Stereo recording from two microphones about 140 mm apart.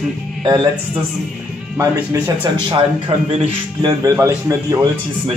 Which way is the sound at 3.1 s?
45° right (ahead or behind).